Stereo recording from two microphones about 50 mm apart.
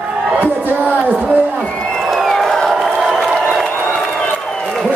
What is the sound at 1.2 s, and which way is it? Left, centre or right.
Speech, right.